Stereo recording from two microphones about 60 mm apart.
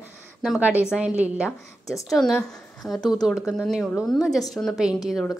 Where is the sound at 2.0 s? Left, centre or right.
Centre.